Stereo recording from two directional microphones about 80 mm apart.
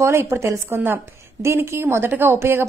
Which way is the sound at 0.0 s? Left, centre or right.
Right.